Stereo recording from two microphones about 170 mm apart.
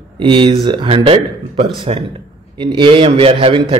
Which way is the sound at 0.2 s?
30° right (ahead or behind).